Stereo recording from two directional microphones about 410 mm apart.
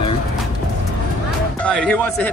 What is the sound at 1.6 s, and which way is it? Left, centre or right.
Speech, centre.